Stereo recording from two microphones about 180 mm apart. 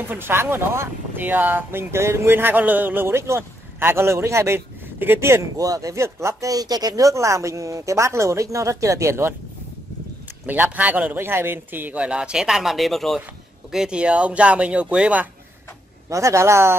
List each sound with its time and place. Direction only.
0.1 s speech: 10° right (ahead or behind)
10.4 s speech: 10° right (ahead or behind)